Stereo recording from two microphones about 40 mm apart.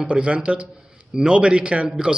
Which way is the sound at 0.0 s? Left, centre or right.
Right.